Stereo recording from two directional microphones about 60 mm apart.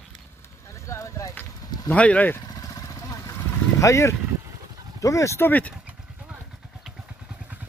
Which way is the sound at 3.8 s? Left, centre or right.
Left.